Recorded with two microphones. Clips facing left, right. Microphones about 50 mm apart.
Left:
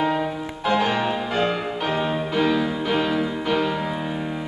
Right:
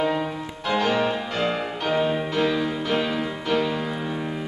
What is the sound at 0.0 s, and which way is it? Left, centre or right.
Music, centre.